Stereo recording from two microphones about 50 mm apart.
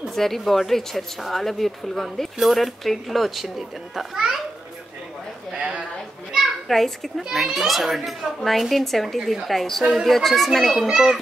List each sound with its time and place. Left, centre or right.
0.1 s speech: centre
5.6 s a sound: centre
6.7 s a child's voice: centre